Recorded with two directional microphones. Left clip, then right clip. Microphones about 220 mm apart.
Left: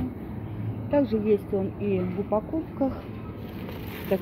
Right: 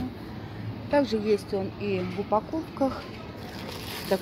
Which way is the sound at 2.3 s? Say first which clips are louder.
Right 2 dB; 20° right (ahead or behind).